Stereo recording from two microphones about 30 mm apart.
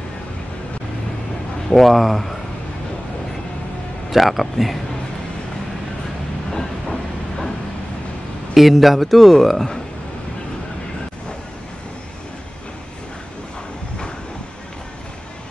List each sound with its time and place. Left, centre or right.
1.7 s a man's voice: centre
4.1 s a man's voice: centre
6.5 s train: centre
8.5 s a man's voice: centre